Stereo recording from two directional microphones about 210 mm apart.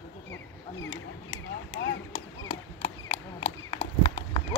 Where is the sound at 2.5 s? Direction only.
35° left (ahead or behind).